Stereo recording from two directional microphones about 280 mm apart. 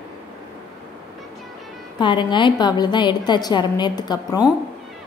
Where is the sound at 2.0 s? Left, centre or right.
Centre.